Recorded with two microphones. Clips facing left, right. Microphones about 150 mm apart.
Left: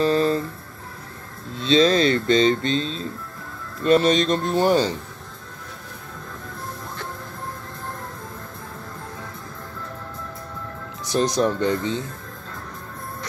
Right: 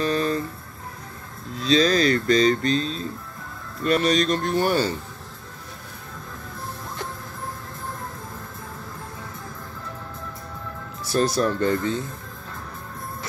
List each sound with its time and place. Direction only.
0.0 s a sound: 30° left (ahead or behind)
1.5 s speech: 30° left (ahead or behind)
11.1 s speech: 20° left (ahead or behind)